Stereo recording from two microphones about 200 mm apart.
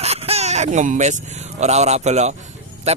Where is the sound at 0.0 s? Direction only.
30° right (ahead or behind).